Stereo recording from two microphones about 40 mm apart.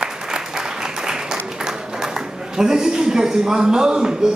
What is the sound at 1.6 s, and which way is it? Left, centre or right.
A woman's voice, centre.